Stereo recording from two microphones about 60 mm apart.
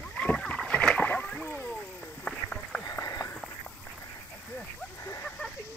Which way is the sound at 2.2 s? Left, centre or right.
Centre.